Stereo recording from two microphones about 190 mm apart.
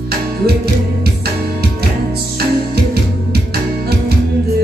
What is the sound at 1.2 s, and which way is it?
Music, 55° right (ahead or behind).